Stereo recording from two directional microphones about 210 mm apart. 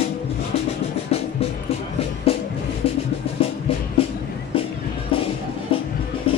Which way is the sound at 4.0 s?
25° left (ahead or behind).